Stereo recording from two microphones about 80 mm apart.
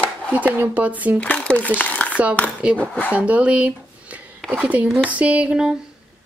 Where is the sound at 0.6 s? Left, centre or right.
Centre.